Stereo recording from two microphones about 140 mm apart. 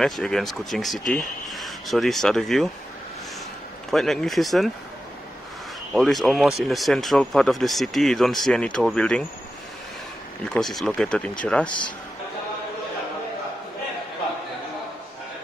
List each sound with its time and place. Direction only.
0.0 s speech: 5° left (ahead or behind)
3.9 s speech: 5° left (ahead or behind)
5.9 s speech: centre (ahead or behind)
10.5 s speech: centre (ahead or behind)